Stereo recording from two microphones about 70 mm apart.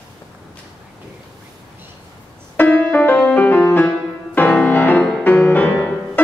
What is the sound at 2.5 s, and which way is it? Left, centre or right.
Music, left.